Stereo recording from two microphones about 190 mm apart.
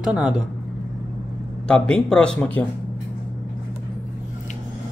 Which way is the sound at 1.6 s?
5° left (ahead or behind).